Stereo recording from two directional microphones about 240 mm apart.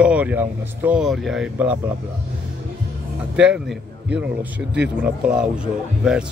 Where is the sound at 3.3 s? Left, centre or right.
Centre.